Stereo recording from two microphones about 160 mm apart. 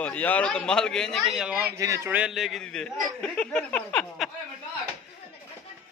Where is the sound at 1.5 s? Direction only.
15° right (ahead or behind); by 4.0 s 10° left (ahead or behind).